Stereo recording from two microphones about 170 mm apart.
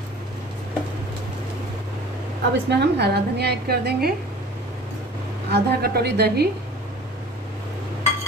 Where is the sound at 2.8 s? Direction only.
75° right (ahead or behind).